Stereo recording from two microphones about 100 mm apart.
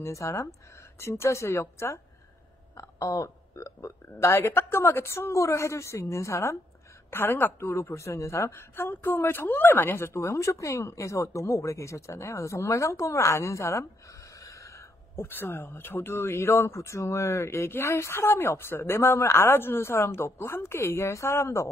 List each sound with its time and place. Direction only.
0.0 s speech: 30° left (ahead or behind)